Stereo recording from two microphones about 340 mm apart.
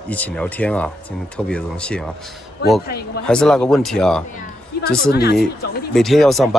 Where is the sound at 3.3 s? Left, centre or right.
Centre.